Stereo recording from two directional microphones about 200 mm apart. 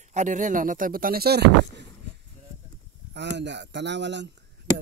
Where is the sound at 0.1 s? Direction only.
35° right (ahead or behind); by 1.9 s 55° right (ahead or behind).